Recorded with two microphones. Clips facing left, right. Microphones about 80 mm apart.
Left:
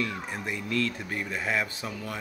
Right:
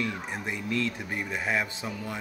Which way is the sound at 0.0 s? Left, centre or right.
Right.